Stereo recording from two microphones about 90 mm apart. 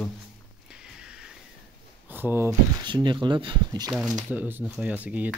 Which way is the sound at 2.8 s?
55° right (ahead or behind).